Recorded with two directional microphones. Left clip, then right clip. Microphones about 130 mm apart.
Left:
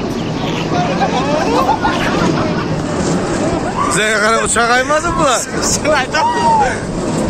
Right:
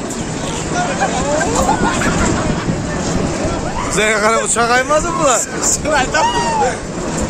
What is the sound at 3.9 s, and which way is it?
Speech, 5° right (ahead or behind).